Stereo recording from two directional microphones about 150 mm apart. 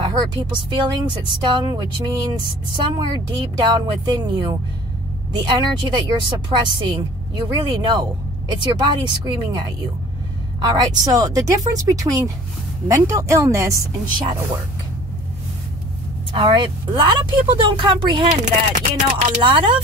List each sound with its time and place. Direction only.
0.0 s a woman's voice: 30° right (ahead or behind)
3.3 s a woman's voice: 30° right (ahead or behind)
16.3 s a woman's voice: 35° right (ahead or behind)
18.4 s a sound: 55° right (ahead or behind)